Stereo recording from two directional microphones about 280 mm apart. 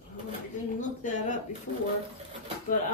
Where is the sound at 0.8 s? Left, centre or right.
Left.